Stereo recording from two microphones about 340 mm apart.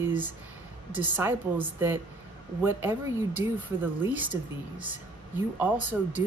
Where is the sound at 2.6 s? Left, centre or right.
Centre.